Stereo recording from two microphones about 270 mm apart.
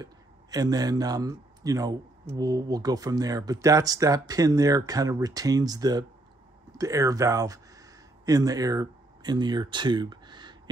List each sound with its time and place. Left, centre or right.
0.0 s speech: centre